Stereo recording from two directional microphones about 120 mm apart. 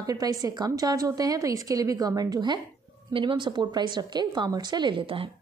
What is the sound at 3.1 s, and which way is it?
A woman's voice, 45° right (ahead or behind).